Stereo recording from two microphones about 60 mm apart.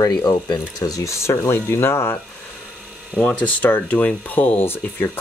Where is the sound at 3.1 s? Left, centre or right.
Left.